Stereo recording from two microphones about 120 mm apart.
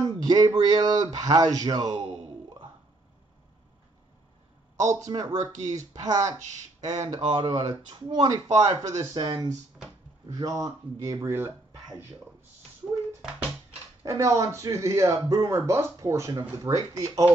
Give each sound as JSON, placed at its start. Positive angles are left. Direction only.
{"t": 0.0, "sound": "speech", "side_deg": -35}
{"t": 4.7, "sound": "speech", "side_deg": -30}
{"t": 6.4, "sound": "speech", "side_deg": -70}
{"t": 7.1, "sound": "speech", "side_deg": -45}
{"t": 14.0, "sound": "speech", "side_deg": -25}